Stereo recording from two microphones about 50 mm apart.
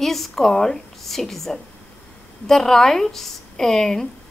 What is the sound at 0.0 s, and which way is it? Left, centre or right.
A woman's voice, centre.